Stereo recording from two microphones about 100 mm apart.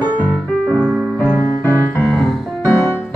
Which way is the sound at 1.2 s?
20° left (ahead or behind).